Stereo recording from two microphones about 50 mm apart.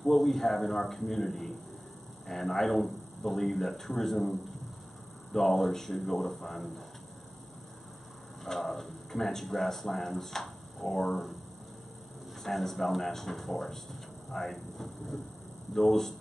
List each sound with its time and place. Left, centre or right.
0.0 s speech: centre
5.3 s speech: centre
8.5 s speech: centre
12.4 s speech: centre